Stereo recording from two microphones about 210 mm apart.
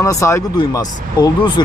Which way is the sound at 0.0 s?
15° left (ahead or behind).